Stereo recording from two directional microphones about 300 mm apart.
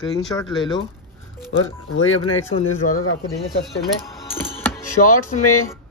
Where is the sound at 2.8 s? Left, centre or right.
Left.